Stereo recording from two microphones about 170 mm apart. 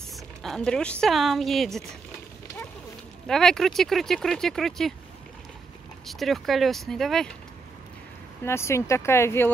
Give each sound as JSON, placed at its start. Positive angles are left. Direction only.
{"t": 0.1, "sound": "a sound", "side_deg": 0}
{"t": 1.0, "sound": "speech", "side_deg": 0}
{"t": 3.3, "sound": "speech", "side_deg": 5}
{"t": 6.0, "sound": "speech", "side_deg": 0}
{"t": 8.5, "sound": "speech", "side_deg": 15}